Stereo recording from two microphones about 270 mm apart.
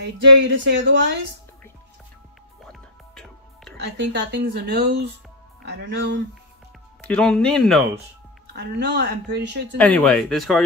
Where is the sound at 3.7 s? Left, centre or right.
Right.